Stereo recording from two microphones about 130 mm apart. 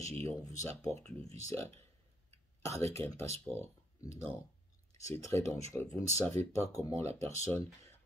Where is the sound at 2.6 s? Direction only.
20° left (ahead or behind).